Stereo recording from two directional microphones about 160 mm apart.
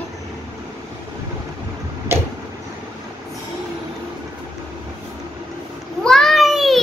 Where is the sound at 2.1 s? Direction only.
15° right (ahead or behind).